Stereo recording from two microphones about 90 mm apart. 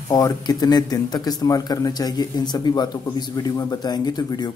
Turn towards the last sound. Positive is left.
turn(degrees=55)  # may be behind; listen again after turning